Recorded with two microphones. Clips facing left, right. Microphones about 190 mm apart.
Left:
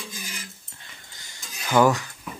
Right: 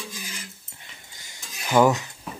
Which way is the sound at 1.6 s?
15° right (ahead or behind).